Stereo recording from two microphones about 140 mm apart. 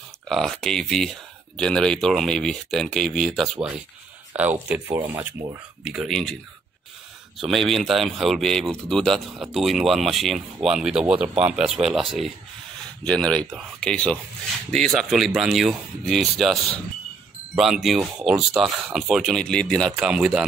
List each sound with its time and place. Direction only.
0.3 s speech: 5° left (ahead or behind)
4.4 s speech: 10° right (ahead or behind)
5.9 s speech: centre (ahead or behind)
7.3 s speech: centre (ahead or behind)
17.6 s speech: centre (ahead or behind)
20.1 s speech: 5° right (ahead or behind)